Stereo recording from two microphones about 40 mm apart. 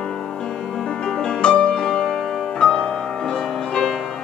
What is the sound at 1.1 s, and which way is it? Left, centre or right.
Music, centre.